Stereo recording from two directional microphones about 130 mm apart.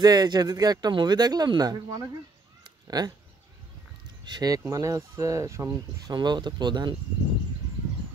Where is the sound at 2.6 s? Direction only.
30° right (ahead or behind).